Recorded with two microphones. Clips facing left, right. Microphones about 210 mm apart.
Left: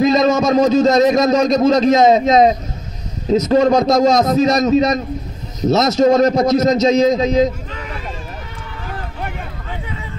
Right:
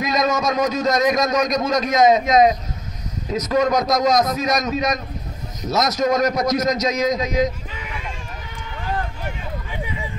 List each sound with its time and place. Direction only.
0.0 s a man's voice: 30° left (ahead or behind)